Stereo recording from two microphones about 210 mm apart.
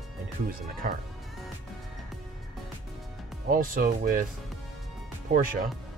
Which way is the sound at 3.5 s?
40° right (ahead or behind).